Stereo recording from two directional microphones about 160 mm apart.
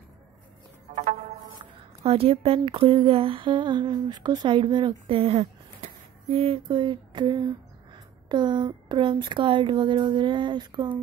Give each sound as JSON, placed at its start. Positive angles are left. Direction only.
{"t": 0.9, "sound": "music", "side_deg": -50}
{"t": 2.0, "sound": "speech", "side_deg": -35}